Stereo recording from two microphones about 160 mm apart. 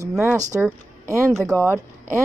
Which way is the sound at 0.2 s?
20° right (ahead or behind).